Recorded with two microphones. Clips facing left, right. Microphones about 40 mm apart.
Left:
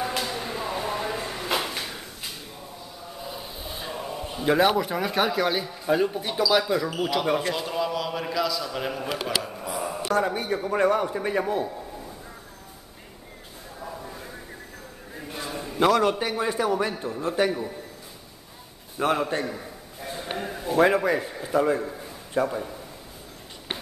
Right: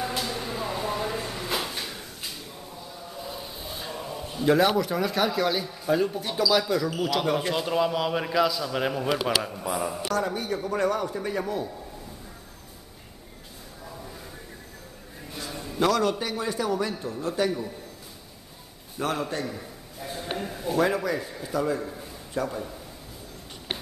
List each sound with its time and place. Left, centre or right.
0.0 s music: centre
1.8 s drawer open or close: centre
3.1 s speech: centre
7.2 s a man's voice: centre
9.7 s a man's voice: centre
9.9 s a man's voice: centre
13.8 s a sound: left
15.1 s a man's voice: left
18.9 s a sound: left
20.8 s a man's voice: left
21.8 s a sound: centre
22.4 s a man's voice: centre